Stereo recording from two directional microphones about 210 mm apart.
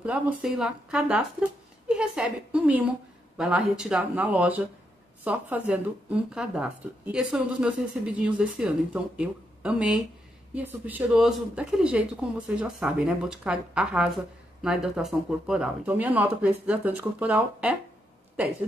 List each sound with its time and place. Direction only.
0.0 s a woman's voice: 5° right (ahead or behind)